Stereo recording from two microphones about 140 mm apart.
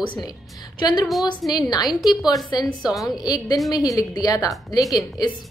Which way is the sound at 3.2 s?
25° left (ahead or behind).